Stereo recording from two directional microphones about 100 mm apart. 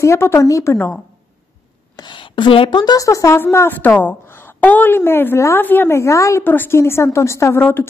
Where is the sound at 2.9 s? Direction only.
35° left (ahead or behind).